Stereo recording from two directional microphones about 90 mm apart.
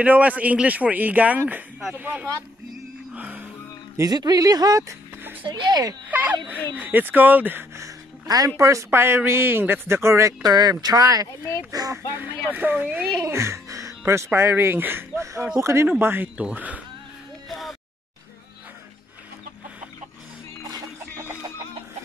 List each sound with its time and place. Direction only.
0.0 s a man's voice: 15° right (ahead or behind)
3.2 s music: 15° right (ahead or behind)
4.0 s speech: 45° right (ahead or behind)
5.4 s speech: 55° right (ahead or behind)
6.0 s speech: 20° right (ahead or behind)
7.8 s a sound: 45° right (ahead or behind)
8.5 s speech: 35° right (ahead or behind)
10.5 s speech: 50° right (ahead or behind)
12.5 s speech: 20° right (ahead or behind)
13.2 s a man's voice: 35° right (ahead or behind); by 16.8 s 15° right (ahead or behind)
17.5 s a sound: centre (ahead or behind)